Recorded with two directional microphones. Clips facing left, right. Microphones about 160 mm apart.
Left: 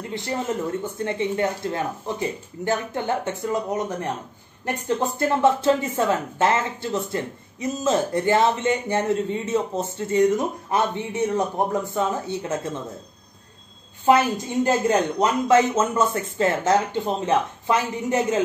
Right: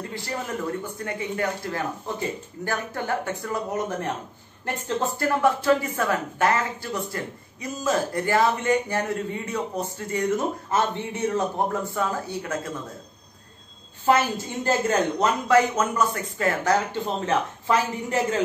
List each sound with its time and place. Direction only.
0.1 s speech: 20° left (ahead or behind)
14.0 s speech: 15° left (ahead or behind)